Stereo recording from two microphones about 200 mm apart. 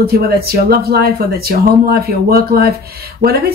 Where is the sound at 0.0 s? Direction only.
50° right (ahead or behind).